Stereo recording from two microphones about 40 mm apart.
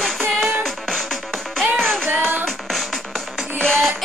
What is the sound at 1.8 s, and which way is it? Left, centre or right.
Child singing, centre.